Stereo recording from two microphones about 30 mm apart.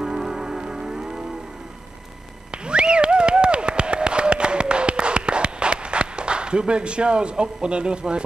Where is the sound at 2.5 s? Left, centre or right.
Right.